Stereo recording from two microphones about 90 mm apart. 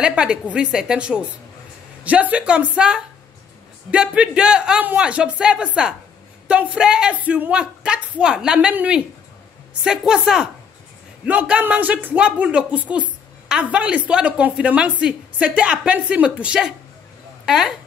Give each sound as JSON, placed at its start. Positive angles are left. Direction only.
{"t": 0.0, "sound": "a woman's voice", "side_deg": -10}